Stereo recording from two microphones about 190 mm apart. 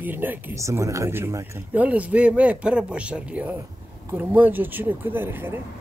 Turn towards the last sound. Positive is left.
turn(degrees=-10)  # may be behind; listen again after turning